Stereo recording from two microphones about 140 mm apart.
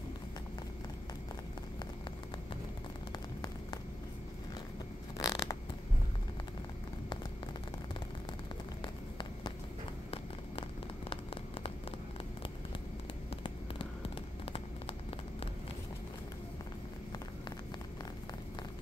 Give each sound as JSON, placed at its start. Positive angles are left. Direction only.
{"t": 5.1, "sound": "mechanisms", "side_deg": 25}
{"t": 8.8, "sound": "run", "side_deg": 35}
{"t": 13.3, "sound": "a sound", "side_deg": 40}